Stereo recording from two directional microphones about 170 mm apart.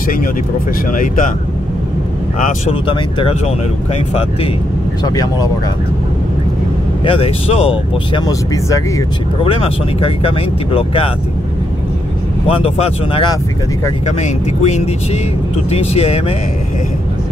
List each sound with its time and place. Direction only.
0.9 s speech: 50° left (ahead or behind)
2.3 s speech: 50° left (ahead or behind)
2.7 s speech: 30° left (ahead or behind)
5.0 s speech: 20° left (ahead or behind)
7.1 s speech: 35° left (ahead or behind)
8.3 s speech: 20° left (ahead or behind)
9.4 s speech: 35° left (ahead or behind)
12.4 s speech: 35° left (ahead or behind)
14.0 s speech: 45° left (ahead or behind)